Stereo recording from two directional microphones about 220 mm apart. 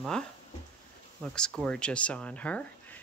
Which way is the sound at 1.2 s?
5° left (ahead or behind).